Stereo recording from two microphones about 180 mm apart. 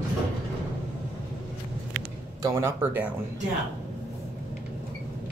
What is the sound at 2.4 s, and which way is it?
Speech, 15° right (ahead or behind).